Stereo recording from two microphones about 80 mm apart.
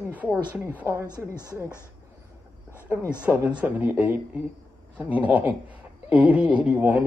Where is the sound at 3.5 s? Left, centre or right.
Right.